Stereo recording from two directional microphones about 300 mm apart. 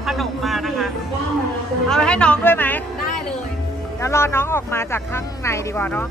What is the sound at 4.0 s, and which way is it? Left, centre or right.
Speech, centre.